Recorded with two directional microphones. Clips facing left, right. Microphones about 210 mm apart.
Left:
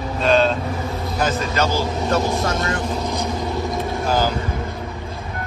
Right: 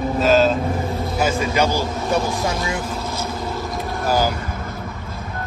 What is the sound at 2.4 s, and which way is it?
Speech, centre (ahead or behind).